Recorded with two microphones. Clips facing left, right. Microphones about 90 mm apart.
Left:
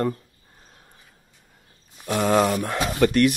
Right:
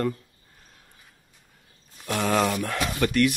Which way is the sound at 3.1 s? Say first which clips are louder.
Left 3 dB; 45° left (ahead or behind).